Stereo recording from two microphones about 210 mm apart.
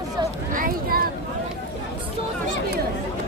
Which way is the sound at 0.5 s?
45° right (ahead or behind).